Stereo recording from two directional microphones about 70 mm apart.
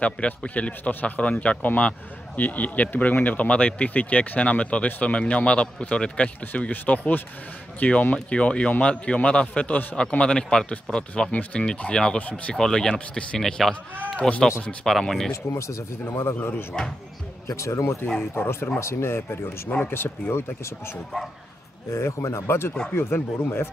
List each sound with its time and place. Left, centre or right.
0.0 s a man's voice: centre
12.5 s a man's voice: centre
14.6 s a man's voice: centre
14.9 s speech: centre
15.5 s speech: left
17.5 s speech: left
18.3 s speech: left
21.9 s speech: left